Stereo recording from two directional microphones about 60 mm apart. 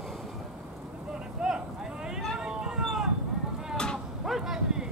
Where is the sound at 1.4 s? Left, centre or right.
Centre.